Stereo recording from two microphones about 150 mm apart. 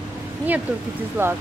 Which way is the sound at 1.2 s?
15° right (ahead or behind).